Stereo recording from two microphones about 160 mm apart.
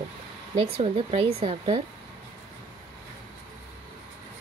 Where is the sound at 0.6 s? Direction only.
35° right (ahead or behind).